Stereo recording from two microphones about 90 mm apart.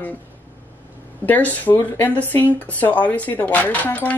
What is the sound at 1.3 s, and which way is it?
Speech, 20° left (ahead or behind).